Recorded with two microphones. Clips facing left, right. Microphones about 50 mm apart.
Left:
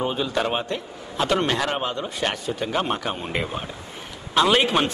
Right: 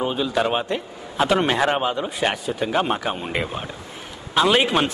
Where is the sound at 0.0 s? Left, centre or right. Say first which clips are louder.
Right 2 dB; centre.